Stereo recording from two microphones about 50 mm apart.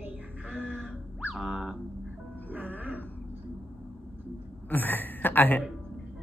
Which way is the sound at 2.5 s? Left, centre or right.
Right.